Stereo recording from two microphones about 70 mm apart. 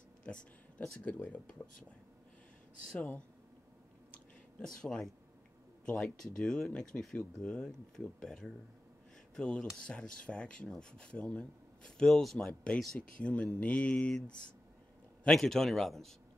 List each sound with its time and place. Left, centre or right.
0.2 s a sound: centre
1.0 s speech: left
4.6 s speech: centre
15.2 s speech: centre